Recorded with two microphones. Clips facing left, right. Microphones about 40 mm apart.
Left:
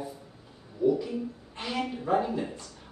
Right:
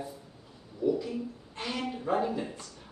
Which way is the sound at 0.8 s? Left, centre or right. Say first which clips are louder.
Left 4 dB; centre.